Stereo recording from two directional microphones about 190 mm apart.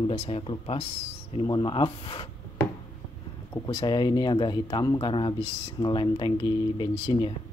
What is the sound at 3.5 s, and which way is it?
Speech, 20° left (ahead or behind).